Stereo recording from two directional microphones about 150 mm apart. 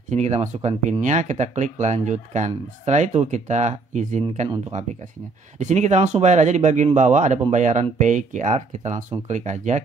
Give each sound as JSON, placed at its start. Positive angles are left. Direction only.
{"t": 0.1, "sound": "speech", "side_deg": -50}